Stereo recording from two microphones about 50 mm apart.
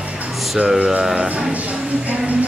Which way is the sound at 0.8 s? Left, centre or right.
Right.